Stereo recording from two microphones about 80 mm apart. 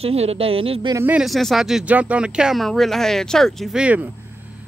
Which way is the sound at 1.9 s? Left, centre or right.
Centre.